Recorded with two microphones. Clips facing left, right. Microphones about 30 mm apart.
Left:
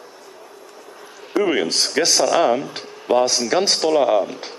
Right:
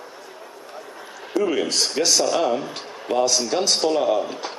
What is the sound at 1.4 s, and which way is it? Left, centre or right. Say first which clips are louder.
Speech: left 3 dB; left.